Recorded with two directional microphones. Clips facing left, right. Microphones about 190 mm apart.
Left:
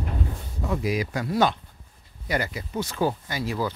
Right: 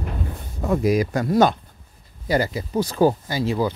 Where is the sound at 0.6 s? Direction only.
45° right (ahead or behind).